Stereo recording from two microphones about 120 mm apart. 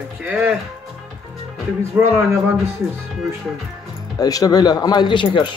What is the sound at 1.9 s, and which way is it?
Speech, 20° right (ahead or behind).